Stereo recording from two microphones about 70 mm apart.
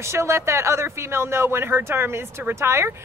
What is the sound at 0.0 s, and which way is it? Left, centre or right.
Speech, right.